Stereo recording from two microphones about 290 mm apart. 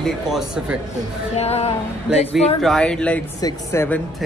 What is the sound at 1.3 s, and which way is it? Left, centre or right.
Music, left.